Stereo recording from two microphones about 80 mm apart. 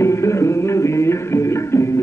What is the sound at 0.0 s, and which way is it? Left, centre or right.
Music, left.